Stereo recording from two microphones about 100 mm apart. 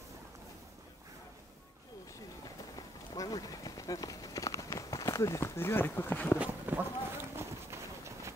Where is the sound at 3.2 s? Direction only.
40° left (ahead or behind); by 6.3 s 20° left (ahead or behind).